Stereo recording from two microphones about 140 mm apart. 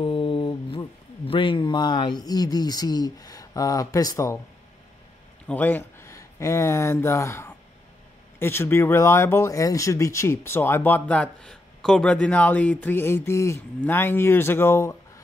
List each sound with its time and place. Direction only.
0.0 s speech: 40° left (ahead or behind); by 4.4 s 25° left (ahead or behind)
5.5 s speech: 15° left (ahead or behind)